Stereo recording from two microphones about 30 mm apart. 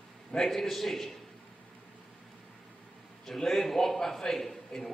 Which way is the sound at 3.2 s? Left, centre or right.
Centre.